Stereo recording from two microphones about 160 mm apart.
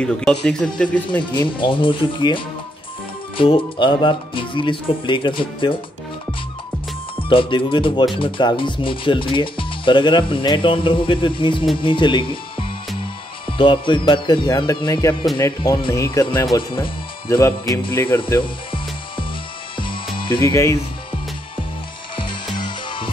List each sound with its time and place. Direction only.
0.0 s speech: 5° left (ahead or behind)
1.2 s speech: 30° left (ahead or behind)
7.2 s speech: 35° left (ahead or behind)
13.5 s music: 30° left (ahead or behind)
16.5 s speech: 30° left (ahead or behind)
17.3 s speech: 15° left (ahead or behind)
18.2 s music: 30° left (ahead or behind)
20.2 s speech: 30° left (ahead or behind)
20.5 s music: 20° left (ahead or behind)
22.1 s music: 30° left (ahead or behind)